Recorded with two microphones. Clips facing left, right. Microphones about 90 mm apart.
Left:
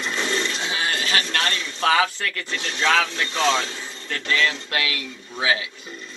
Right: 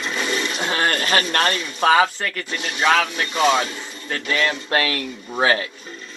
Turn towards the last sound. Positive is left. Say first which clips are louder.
# right 5 dB
turn(degrees=-45)  # may be behind; listen again after turning